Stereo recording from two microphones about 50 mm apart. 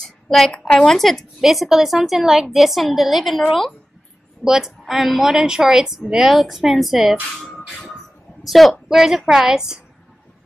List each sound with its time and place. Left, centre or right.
0.0 s a sound: centre
0.6 s speech: centre
0.9 s a woman's voice: centre
1.4 s a woman's voice: centre
4.5 s a woman's voice: centre
7.3 s music: centre
8.5 s a woman's voice: centre